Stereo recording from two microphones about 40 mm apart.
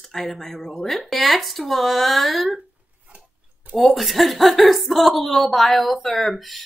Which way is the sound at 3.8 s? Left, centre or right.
Centre.